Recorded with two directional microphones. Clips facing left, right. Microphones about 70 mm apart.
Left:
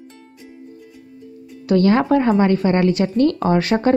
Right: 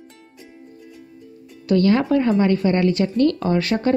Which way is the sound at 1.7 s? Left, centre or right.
Left.